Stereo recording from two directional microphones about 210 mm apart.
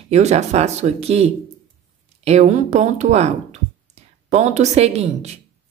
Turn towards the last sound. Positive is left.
turn(degrees=-30)  # may be behind; listen again after turning